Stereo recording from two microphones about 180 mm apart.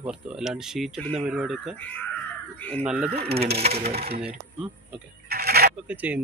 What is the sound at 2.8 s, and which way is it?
Speech, 5° right (ahead or behind).